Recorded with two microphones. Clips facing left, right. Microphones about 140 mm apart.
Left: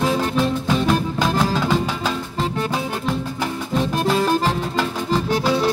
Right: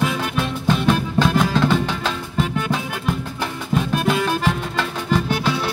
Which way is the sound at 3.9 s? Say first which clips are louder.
Left 3 dB; 35° left (ahead or behind).